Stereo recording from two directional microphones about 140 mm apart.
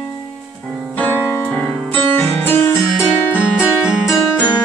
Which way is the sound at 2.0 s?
10° left (ahead or behind).